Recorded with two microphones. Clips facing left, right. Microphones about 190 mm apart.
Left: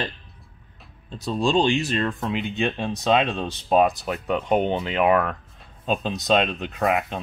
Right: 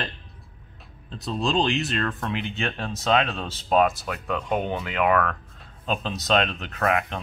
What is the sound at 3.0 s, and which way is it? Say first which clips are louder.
Speech: left 2 dB; 15° left (ahead or behind).